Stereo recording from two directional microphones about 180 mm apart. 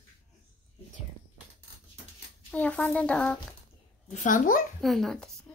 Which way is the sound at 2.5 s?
10° left (ahead or behind).